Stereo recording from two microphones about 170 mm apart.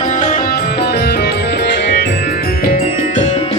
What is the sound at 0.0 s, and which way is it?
Music, 45° left (ahead or behind).